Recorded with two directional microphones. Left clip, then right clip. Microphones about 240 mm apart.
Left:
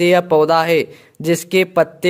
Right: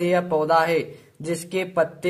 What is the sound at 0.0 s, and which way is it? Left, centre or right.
A man's voice, left.